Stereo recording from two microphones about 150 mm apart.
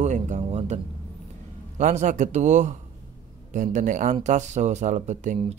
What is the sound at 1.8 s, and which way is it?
Speech, 55° right (ahead or behind).